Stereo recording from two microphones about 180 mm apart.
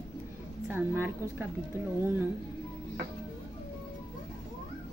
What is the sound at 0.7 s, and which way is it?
Speech, 10° right (ahead or behind).